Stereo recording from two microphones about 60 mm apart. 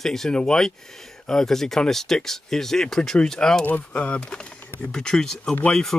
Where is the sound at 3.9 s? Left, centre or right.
Left.